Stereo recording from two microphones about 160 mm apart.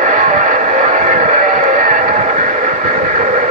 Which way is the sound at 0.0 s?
50° right (ahead or behind).